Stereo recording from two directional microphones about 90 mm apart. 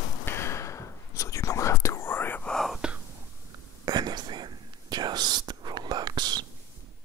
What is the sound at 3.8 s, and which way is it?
Whispering, 50° right (ahead or behind).